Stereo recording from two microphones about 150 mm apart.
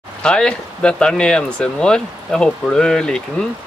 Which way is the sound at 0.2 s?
5° left (ahead or behind).